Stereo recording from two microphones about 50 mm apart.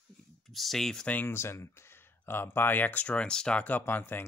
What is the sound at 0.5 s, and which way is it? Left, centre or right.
Speech, centre.